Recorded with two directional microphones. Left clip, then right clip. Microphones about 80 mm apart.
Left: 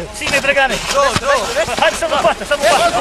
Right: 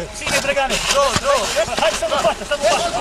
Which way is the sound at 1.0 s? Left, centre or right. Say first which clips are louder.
Left 3 dB; centre.